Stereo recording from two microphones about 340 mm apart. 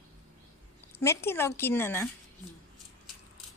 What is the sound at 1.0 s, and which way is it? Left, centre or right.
Speech, centre.